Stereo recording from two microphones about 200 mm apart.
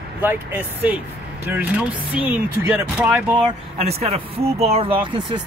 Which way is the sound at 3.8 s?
30° right (ahead or behind).